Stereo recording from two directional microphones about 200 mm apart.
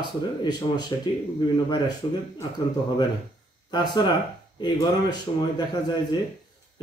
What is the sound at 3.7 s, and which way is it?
Speech, 20° left (ahead or behind).